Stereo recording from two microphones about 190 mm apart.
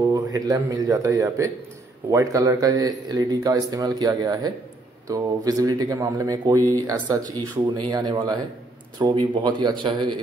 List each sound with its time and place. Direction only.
0.1 s speech: 20° right (ahead or behind)